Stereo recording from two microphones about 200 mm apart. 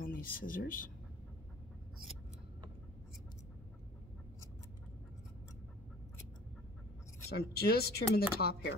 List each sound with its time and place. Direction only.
0.0 s speech: 45° left (ahead or behind)
7.2 s speech: 50° left (ahead or behind)